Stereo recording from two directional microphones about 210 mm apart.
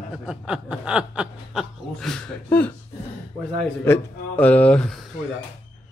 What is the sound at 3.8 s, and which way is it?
Speech, 10° left (ahead or behind).